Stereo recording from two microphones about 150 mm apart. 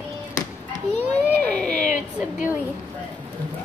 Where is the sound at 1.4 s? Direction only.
5° left (ahead or behind).